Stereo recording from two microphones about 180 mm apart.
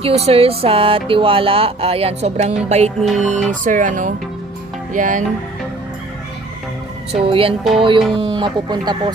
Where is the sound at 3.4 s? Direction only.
45° right (ahead or behind).